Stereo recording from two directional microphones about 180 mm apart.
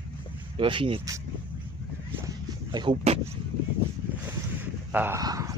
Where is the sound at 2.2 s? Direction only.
25° right (ahead or behind).